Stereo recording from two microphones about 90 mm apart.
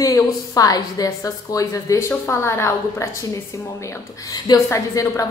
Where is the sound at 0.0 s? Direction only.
40° left (ahead or behind).